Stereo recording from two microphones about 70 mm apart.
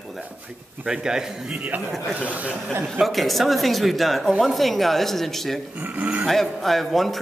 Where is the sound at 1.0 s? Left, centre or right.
Centre.